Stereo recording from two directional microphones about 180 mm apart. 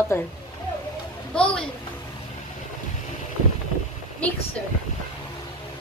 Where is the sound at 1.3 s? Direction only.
5° left (ahead or behind).